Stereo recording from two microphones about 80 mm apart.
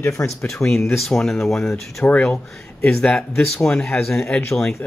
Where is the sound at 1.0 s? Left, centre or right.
Centre.